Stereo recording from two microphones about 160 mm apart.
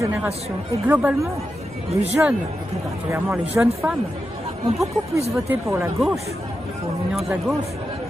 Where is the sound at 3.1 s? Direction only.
15° right (ahead or behind).